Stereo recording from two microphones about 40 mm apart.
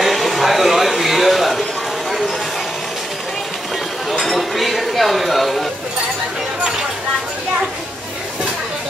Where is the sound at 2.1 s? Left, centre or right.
Centre.